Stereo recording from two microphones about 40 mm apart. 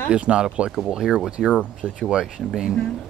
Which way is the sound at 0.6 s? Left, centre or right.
Centre.